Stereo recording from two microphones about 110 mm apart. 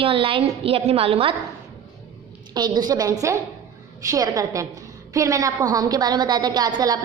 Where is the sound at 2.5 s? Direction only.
40° right (ahead or behind).